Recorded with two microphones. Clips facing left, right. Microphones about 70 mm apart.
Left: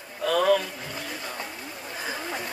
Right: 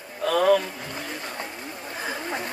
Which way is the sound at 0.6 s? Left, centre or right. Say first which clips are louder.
Right 2 dB; right.